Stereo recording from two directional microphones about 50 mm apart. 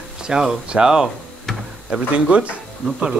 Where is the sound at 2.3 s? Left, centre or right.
Right.